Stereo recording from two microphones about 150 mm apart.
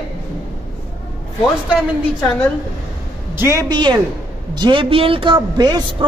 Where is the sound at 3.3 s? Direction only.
15° right (ahead or behind).